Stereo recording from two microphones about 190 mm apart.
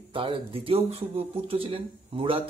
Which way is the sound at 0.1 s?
25° right (ahead or behind).